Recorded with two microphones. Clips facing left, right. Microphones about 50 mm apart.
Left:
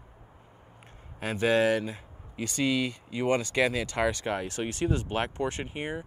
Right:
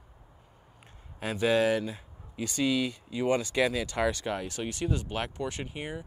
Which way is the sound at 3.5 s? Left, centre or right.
Left.